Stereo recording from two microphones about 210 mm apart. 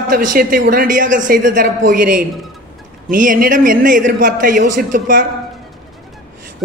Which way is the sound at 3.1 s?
40° right (ahead or behind).